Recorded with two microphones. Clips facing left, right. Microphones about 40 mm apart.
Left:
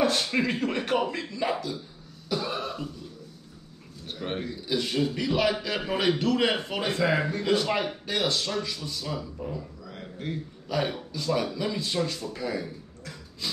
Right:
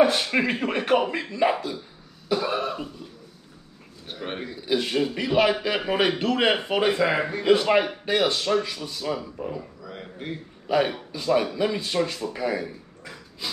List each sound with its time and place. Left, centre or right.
0.0 s a man's voice: right